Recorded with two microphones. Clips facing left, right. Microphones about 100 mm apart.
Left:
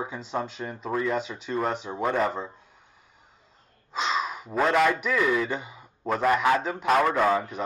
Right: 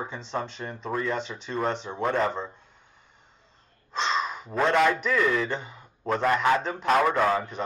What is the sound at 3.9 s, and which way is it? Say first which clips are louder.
Speech: even; 5° left (ahead or behind).